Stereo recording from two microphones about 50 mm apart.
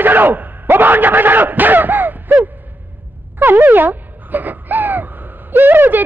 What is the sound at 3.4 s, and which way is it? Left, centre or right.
Gasp, right.